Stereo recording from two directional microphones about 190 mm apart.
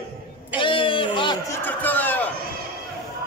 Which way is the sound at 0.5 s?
25° left (ahead or behind).